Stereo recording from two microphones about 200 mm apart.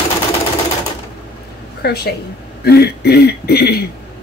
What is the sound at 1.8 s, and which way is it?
A woman's voice, 50° left (ahead or behind).